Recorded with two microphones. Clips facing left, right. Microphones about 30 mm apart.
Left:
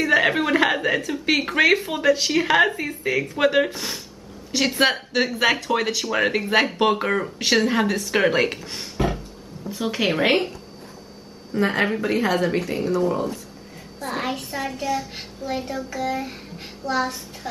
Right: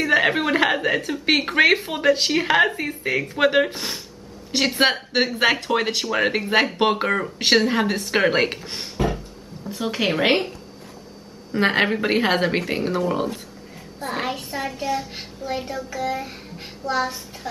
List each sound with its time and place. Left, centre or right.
0.0 s speech: centre
6.8 s speech: centre
7.1 s speech: centre
7.3 s speech: centre
8.9 s a sound: centre
9.7 s speech: centre
11.6 s a woman's voice: right
12.5 s a woman's voice: right
14.0 s a child's voice: centre